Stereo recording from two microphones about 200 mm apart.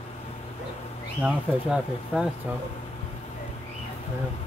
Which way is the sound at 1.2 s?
5° right (ahead or behind).